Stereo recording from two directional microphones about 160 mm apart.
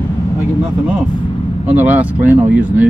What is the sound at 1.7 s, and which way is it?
Speech, 10° right (ahead or behind).